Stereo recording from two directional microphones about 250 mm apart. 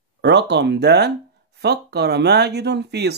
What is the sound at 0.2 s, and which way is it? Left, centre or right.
Speech, right.